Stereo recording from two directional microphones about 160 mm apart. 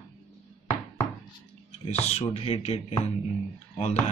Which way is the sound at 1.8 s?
40° left (ahead or behind).